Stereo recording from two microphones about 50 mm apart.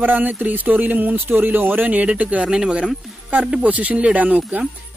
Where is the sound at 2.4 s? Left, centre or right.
Centre.